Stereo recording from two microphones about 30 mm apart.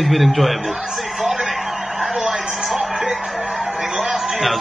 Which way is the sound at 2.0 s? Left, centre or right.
Centre.